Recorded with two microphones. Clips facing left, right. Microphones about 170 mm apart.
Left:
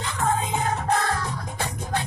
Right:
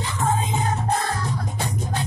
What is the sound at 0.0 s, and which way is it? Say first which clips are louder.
Music: right 1 dB; 60° left (ahead or behind).